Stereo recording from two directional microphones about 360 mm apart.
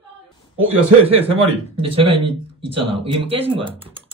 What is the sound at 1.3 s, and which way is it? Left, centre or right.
Speech, centre.